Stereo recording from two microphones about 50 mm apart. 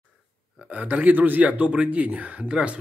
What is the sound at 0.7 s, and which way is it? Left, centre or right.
A man's voice, right.